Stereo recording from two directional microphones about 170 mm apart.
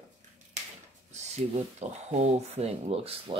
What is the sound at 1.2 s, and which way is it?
Speech, 40° right (ahead or behind).